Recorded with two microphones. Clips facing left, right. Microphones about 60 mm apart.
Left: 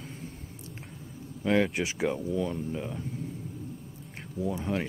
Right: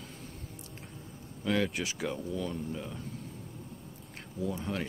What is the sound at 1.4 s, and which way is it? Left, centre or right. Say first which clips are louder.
Speech: left 5 dB; left.